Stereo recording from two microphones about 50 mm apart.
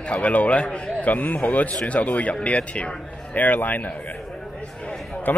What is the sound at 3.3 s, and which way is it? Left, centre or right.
Speech, left.